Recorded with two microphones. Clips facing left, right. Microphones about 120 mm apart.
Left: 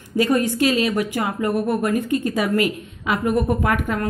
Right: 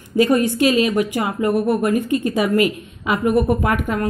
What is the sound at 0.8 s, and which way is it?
A woman's voice, 15° right (ahead or behind).